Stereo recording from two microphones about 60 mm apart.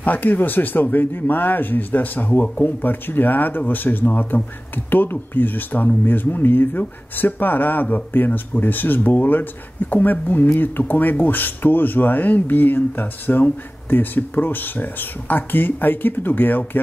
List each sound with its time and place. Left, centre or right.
0.0 s speech: left